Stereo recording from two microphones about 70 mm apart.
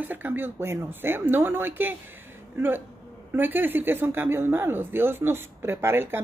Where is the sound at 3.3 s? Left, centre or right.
Right.